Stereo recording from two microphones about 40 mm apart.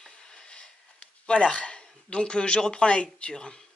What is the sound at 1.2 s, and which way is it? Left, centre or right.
Speech, left.